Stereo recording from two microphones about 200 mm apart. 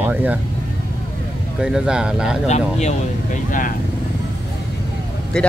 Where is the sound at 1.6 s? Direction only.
5° right (ahead or behind).